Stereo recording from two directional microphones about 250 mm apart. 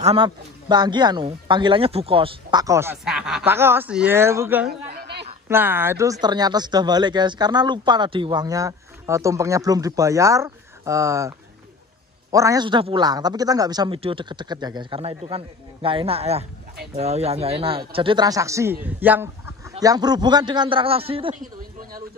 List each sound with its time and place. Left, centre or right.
0.0 s speech: right
4.6 s chatter: right
5.5 s a man's voice: centre